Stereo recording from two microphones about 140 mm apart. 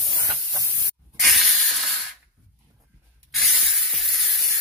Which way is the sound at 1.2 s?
Centre (ahead or behind).